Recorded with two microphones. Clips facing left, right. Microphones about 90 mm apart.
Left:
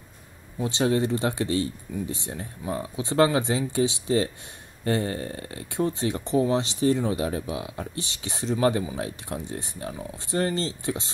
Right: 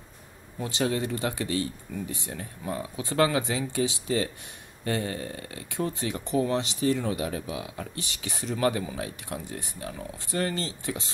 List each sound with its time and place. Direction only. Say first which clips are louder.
0.7 s speech: left 4 dB; 30° left (ahead or behind)